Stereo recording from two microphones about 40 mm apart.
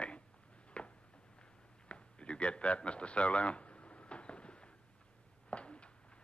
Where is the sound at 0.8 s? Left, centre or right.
Left.